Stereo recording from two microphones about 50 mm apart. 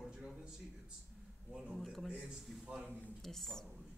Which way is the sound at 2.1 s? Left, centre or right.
Centre.